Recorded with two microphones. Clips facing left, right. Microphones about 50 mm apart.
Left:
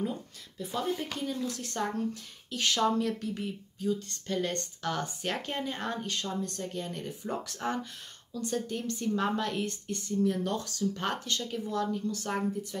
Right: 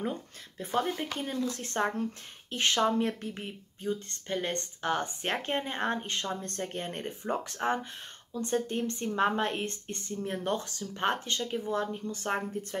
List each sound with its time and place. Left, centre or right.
0.6 s speech: right